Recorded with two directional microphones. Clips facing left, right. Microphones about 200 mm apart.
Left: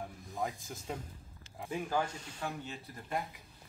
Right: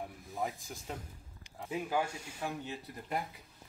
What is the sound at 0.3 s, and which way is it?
Speech, centre (ahead or behind).